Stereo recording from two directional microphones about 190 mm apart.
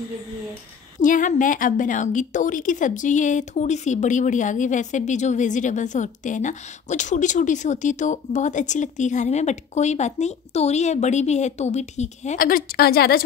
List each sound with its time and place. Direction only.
1.0 s a woman's voice: 45° left (ahead or behind)